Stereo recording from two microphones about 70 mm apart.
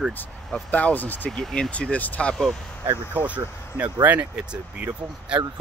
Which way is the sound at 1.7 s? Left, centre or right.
Centre.